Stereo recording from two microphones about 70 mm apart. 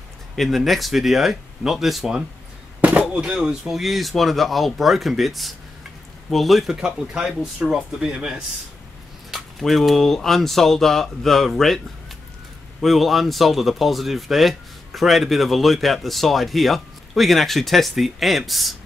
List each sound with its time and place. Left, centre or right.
0.4 s speech: centre
2.8 s firecracker: right
3.3 s speech: centre
9.3 s speech: centre
12.8 s speech: centre